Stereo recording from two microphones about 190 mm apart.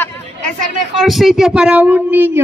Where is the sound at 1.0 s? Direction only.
Centre (ahead or behind).